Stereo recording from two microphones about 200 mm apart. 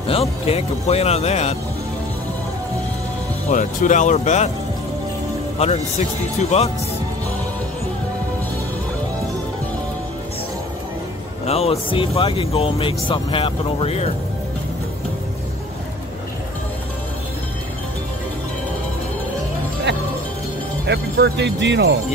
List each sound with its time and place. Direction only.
0.0 s speech: 30° left (ahead or behind)
3.4 s speech: 40° left (ahead or behind)
5.6 s speech: 30° left (ahead or behind)
11.4 s speech: 30° left (ahead or behind)
20.8 s speech: 60° right (ahead or behind)